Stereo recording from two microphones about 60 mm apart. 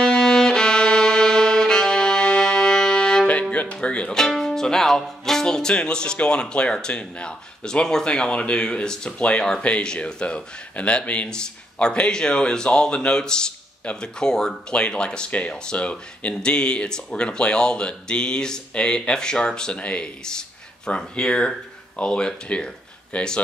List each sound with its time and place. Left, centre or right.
0.0 s violin: centre
3.7 s speech: centre
4.1 s speech: centre